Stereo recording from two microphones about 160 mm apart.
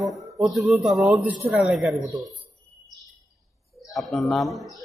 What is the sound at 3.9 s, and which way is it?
Speech, centre (ahead or behind).